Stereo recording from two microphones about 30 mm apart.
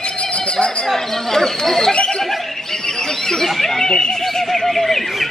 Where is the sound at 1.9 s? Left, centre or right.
Left.